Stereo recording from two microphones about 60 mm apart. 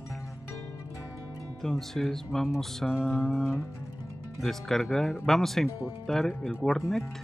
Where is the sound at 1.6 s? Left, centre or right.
Centre.